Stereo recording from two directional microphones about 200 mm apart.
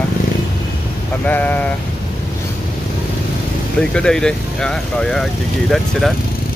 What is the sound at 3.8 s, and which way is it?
Speech, 5° left (ahead or behind).